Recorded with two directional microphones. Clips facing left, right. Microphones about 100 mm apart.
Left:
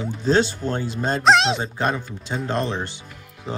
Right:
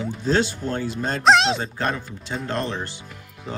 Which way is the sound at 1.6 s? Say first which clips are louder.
Left 2 dB; 20° left (ahead or behind).